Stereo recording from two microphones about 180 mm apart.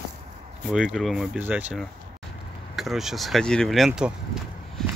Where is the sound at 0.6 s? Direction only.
5° right (ahead or behind).